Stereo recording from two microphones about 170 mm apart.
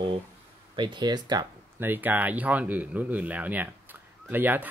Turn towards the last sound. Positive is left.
turn(degrees=-10)  # may be behind; listen again after turning